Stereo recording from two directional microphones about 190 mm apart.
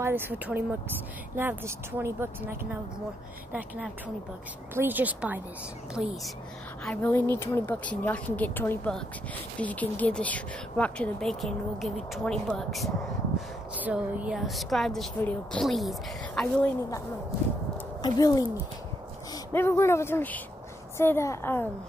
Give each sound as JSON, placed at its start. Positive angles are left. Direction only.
{"t": 0.0, "sound": "speech", "side_deg": -10}
{"t": 4.7, "sound": "speech", "side_deg": -10}
{"t": 6.8, "sound": "a woman's voice", "side_deg": 10}
{"t": 18.0, "sound": "a woman's voice", "side_deg": 20}